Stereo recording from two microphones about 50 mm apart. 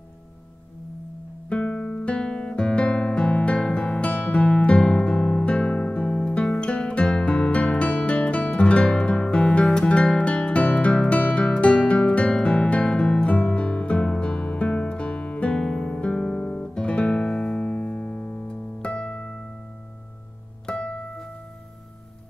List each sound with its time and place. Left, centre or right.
1.5 s guitar: left
4.6 s music: centre
15.5 s guitar: centre
20.6 s music: centre